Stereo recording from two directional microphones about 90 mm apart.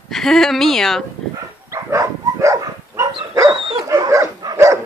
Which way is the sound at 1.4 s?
35° right (ahead or behind).